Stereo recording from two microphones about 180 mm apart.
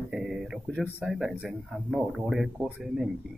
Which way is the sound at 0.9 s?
5° right (ahead or behind).